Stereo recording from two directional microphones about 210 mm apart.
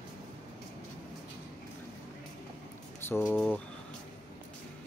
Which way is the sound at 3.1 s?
10° left (ahead or behind).